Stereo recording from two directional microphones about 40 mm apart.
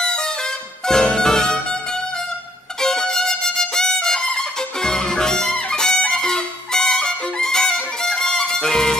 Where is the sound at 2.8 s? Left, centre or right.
Centre.